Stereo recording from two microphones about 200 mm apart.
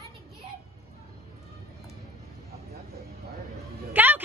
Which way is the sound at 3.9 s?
10° right (ahead or behind).